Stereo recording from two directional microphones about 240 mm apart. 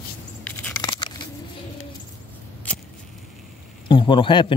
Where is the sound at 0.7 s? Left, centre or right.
Centre.